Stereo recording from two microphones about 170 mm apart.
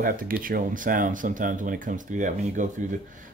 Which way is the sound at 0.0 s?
55° right (ahead or behind).